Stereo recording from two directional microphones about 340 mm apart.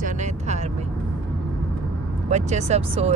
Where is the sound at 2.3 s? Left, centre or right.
Centre.